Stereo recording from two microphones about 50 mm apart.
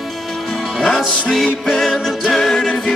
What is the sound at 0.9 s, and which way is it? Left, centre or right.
Music, centre.